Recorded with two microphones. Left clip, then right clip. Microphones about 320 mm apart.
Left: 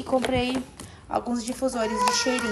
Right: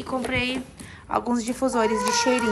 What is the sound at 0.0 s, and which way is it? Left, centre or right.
A child's voice, centre.